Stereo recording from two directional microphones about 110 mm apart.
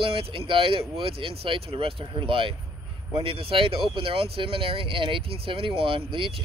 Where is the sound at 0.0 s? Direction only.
55° right (ahead or behind).